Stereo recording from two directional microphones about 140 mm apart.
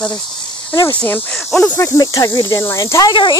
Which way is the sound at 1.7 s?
25° left (ahead or behind).